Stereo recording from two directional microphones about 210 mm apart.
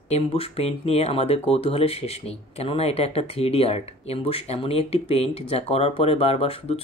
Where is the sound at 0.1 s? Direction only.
30° left (ahead or behind).